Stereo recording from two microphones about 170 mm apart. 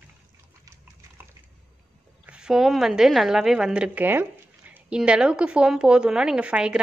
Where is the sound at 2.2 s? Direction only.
5° right (ahead or behind).